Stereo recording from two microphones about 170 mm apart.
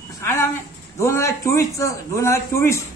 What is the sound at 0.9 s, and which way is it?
A man's voice, 15° left (ahead or behind).